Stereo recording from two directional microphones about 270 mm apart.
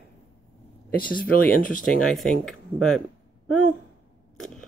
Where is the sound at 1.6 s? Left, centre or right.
Left.